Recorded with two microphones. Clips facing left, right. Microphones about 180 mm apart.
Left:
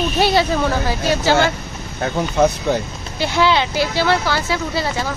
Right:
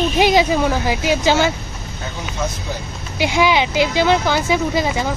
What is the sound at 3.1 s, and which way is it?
Speech, 15° right (ahead or behind).